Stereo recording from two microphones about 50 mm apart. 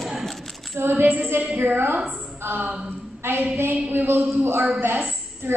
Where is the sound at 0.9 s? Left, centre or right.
Right.